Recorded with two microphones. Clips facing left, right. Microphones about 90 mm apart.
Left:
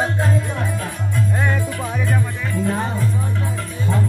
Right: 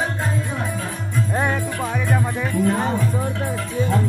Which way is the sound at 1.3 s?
15° right (ahead or behind).